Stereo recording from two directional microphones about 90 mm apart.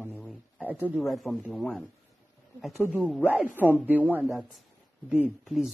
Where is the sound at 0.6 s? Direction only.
20° right (ahead or behind).